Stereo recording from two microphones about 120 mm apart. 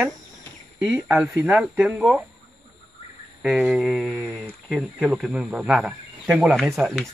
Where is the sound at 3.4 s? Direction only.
10° right (ahead or behind).